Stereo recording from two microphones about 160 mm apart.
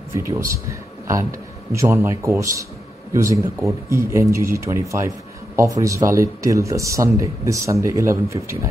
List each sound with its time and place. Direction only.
0.1 s a man's voice: 20° right (ahead or behind)